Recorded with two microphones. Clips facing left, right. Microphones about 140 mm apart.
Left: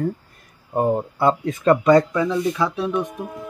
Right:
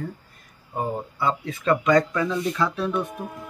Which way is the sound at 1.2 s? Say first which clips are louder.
Left 6 dB; 45° left (ahead or behind).